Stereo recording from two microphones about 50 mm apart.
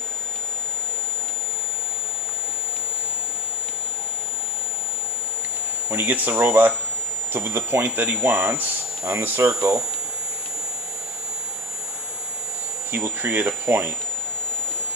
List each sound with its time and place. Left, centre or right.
5.9 s speech: right
9.0 s speech: right
12.9 s speech: right